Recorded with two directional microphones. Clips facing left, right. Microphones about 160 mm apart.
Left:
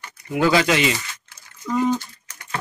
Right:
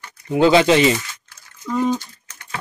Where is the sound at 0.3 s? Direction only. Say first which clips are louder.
Right 5 dB; 25° right (ahead or behind).